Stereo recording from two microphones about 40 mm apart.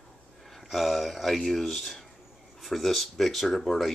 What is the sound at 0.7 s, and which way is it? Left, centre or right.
Speech, centre.